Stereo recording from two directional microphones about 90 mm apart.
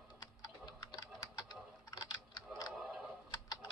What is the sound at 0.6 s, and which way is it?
Typing, 50° left (ahead or behind).